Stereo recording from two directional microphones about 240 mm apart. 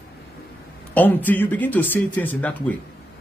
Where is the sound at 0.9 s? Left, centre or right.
Centre.